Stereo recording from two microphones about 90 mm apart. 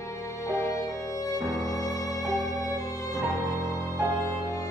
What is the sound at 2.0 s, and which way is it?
Music, 40° right (ahead or behind).